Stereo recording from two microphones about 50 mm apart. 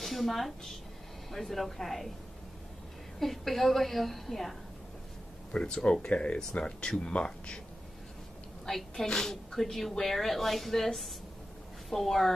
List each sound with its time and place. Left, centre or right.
0.0 s a sound: centre
1.3 s a woman's voice: centre
3.2 s a woman's voice: centre
5.6 s speech: centre
8.6 s a woman's voice: centre